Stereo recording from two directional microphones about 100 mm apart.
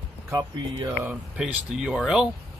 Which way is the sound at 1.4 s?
5° right (ahead or behind).